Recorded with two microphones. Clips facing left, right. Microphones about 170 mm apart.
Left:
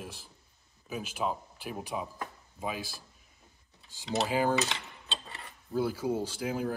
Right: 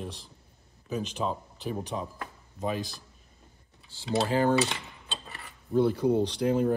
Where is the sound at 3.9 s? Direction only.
15° left (ahead or behind).